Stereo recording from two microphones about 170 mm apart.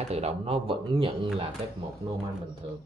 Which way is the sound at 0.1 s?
35° right (ahead or behind).